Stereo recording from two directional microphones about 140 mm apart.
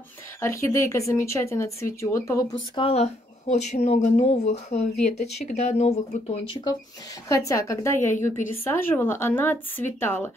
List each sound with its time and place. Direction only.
0.4 s speech: 20° left (ahead or behind)
2.7 s speech: 45° left (ahead or behind)
7.2 s a woman's voice: 20° left (ahead or behind)